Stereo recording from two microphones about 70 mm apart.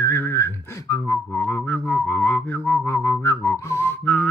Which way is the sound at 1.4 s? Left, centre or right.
Left.